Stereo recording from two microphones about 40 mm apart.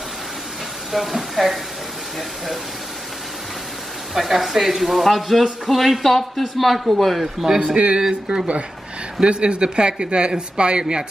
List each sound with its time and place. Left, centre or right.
0.9 s a man's voice: centre
4.1 s a man's voice: centre
7.4 s a man's voice: centre
7.7 s speech: right